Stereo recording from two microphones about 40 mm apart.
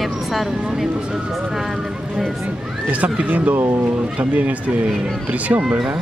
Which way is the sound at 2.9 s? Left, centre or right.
Right.